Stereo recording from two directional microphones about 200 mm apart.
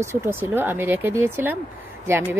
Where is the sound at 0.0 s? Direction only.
10° right (ahead or behind).